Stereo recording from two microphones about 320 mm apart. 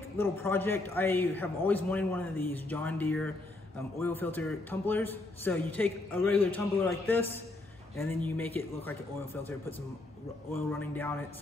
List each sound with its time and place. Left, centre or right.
0.2 s a man's voice: centre